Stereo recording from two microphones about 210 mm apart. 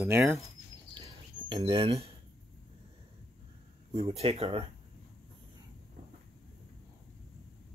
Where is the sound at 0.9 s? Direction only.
20° right (ahead or behind).